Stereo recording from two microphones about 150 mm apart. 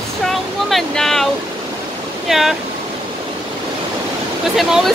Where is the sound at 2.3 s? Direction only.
Centre (ahead or behind).